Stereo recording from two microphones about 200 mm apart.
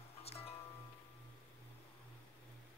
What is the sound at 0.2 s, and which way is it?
Music, 30° left (ahead or behind).